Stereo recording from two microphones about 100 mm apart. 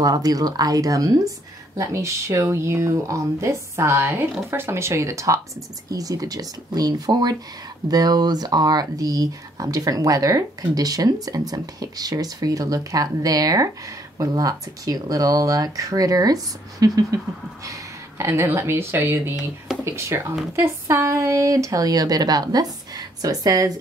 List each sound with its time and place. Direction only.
0.0 s speech: 40° right (ahead or behind); by 19.3 s 20° right (ahead or behind)
19.7 s a sound: 5° right (ahead or behind)
20.1 s speech: 30° right (ahead or behind)